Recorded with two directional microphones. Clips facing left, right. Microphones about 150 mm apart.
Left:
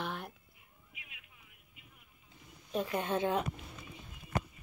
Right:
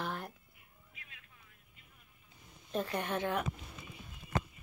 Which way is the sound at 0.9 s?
15° left (ahead or behind).